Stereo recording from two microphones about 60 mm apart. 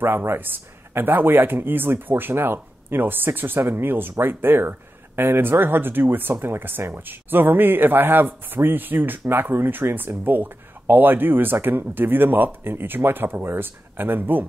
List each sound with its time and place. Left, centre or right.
0.0 s speech: right